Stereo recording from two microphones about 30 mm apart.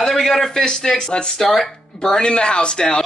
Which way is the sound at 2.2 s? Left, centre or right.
Left.